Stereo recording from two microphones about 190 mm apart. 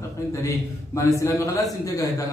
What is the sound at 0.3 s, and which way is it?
A man's voice, 15° left (ahead or behind).